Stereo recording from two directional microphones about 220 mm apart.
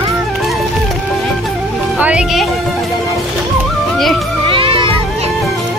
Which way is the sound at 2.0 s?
5° right (ahead or behind).